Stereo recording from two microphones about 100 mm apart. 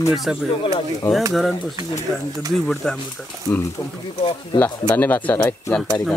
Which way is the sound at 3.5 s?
40° left (ahead or behind).